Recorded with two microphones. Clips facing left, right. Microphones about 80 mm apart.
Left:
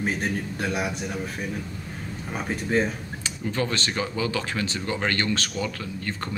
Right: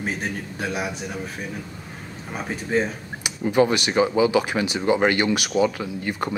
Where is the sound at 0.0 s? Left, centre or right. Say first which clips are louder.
Left 1 dB; centre.